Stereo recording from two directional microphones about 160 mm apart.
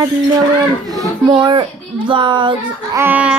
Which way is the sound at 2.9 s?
10° right (ahead or behind).